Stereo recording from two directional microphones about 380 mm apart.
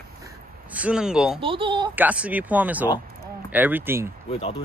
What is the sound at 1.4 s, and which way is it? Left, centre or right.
Speech, centre.